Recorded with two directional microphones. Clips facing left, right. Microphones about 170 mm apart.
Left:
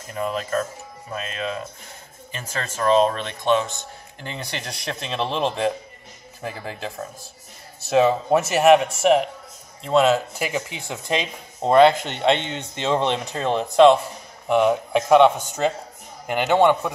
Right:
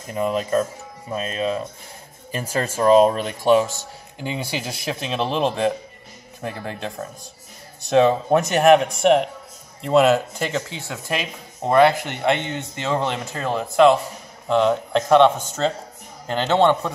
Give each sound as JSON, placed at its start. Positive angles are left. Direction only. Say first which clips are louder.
{"t": 0.2, "sound": "speech", "louder": "right 3 dB", "side_deg": -10}
{"t": 1.1, "sound": "speech", "louder": "right 5 dB", "side_deg": -30}
{"t": 3.2, "sound": "a man's voice", "louder": "right 4 dB", "side_deg": -10}
{"t": 10.5, "sound": "speech", "louder": "right 1 dB", "side_deg": 15}
{"t": 14.5, "sound": "speech", "louder": "even", "side_deg": 10}